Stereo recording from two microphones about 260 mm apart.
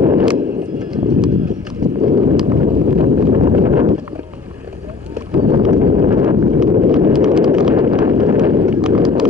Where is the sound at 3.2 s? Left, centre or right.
Centre.